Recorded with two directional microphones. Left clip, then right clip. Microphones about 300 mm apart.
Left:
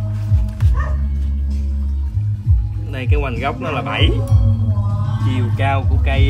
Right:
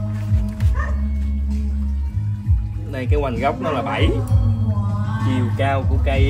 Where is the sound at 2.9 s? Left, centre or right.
Centre.